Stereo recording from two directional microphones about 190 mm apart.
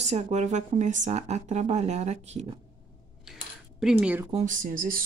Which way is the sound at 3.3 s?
5° right (ahead or behind).